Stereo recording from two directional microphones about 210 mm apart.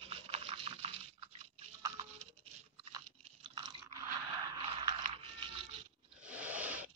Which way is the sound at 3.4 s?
20° right (ahead or behind).